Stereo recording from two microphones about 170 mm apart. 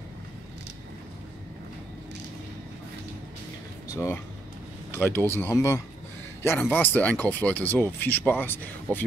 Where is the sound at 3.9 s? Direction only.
15° left (ahead or behind).